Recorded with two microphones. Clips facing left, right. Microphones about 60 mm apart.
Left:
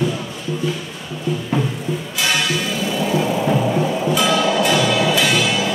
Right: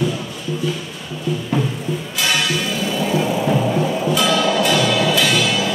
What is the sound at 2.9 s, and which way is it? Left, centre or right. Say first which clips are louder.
Music: even; left.